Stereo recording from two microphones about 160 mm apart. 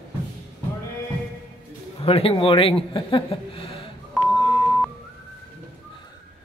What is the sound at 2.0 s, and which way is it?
A man's voice, 35° left (ahead or behind).